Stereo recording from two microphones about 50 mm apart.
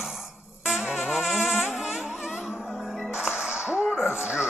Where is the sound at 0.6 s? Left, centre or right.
Centre.